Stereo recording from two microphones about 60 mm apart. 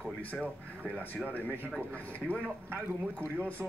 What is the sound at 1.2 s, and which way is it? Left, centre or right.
Speech, left.